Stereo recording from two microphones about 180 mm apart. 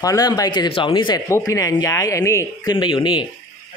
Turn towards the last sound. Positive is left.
turn(degrees=25)  # may be behind; listen again after turning